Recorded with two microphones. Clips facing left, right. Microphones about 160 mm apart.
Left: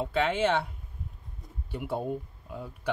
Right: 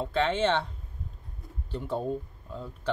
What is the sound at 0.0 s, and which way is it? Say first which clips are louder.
Speech: even; 10° left (ahead or behind).